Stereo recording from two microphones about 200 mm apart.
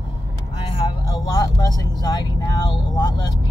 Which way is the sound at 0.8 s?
20° left (ahead or behind).